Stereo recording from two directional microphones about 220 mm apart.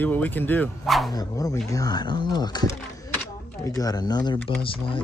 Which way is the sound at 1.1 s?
15° left (ahead or behind).